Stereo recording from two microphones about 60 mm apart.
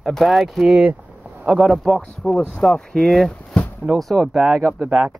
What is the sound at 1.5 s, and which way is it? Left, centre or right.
Speech, centre.